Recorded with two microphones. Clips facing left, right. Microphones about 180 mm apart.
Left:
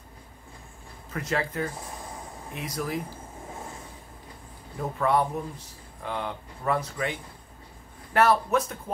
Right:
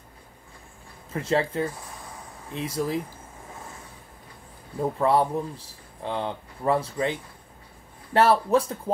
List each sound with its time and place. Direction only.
1.1 s speech: 30° right (ahead or behind)
4.9 s speech: 30° right (ahead or behind)